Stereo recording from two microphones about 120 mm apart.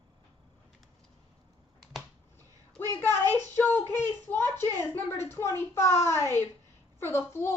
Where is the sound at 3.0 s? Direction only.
15° left (ahead or behind).